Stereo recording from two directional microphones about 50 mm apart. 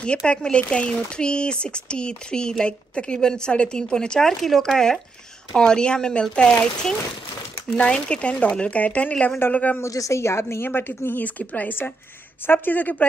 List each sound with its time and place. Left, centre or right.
0.0 s speech: centre
9.8 s speech: left
11.1 s a woman's voice: left